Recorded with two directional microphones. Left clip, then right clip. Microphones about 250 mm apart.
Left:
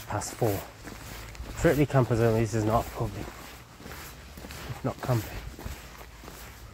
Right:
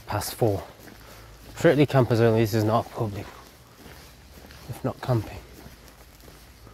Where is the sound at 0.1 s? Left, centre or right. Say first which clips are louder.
Right 4 dB; right.